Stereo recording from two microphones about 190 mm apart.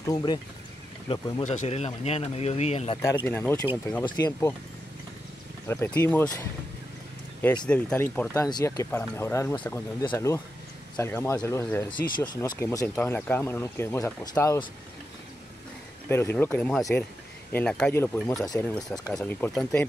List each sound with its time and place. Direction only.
0.0 s speech: 20° left (ahead or behind)
1.4 s speech: 40° left (ahead or behind)
3.0 s speech: 15° left (ahead or behind)
5.7 s speech: 10° left (ahead or behind)
7.6 s speech: 5° left (ahead or behind)
8.4 s speech: 20° left (ahead or behind)
16.1 s speech: 10° left (ahead or behind)